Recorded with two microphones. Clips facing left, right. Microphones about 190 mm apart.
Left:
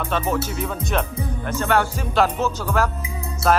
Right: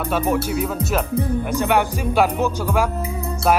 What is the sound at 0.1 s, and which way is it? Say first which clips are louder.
Speech: right 3 dB; 10° right (ahead or behind).